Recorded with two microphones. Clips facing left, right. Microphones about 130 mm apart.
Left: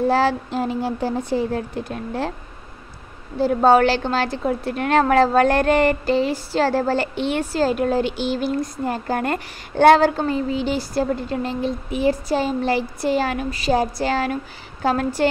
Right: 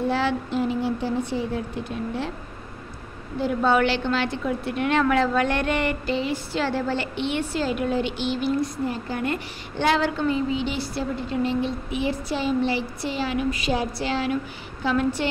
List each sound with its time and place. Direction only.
0.1 s a woman's voice: 40° left (ahead or behind)
3.3 s a woman's voice: 35° left (ahead or behind)
13.5 s a woman's voice: 35° left (ahead or behind)